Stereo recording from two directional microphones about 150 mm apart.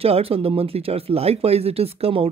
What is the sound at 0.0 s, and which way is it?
Speech, 40° right (ahead or behind).